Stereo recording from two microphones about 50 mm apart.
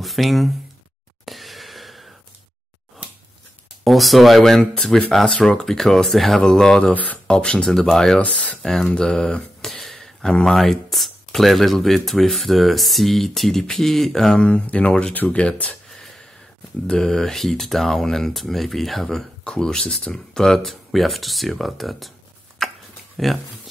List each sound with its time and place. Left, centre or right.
0.0 s speech: centre
1.2 s a sound: centre
3.8 s speech: centre
6.9 s speech: left
7.2 s speech: centre
8.2 s speech: left
8.6 s speech: centre
9.6 s a sound: centre
10.4 s speech: centre
14.4 s speech: left
16.8 s speech: centre
22.6 s a sound: centre
23.1 s speech: centre